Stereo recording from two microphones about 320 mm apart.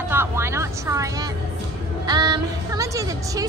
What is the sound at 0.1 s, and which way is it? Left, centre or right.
Vehicle, centre.